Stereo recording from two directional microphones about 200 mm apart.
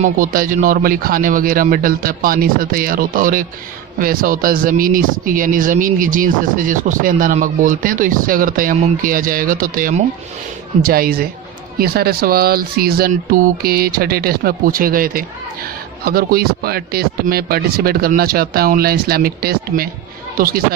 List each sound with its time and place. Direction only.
0.0 s speech: 45° right (ahead or behind)